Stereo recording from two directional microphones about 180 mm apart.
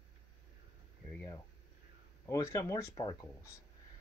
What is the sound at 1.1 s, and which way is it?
Speech, 10° left (ahead or behind).